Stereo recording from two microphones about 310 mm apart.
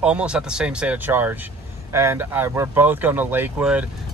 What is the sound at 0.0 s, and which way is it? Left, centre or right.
Speech, centre.